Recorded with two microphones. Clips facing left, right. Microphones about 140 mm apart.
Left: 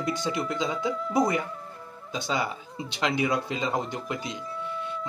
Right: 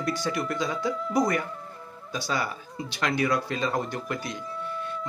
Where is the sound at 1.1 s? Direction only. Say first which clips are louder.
Left 1 dB; 20° left (ahead or behind).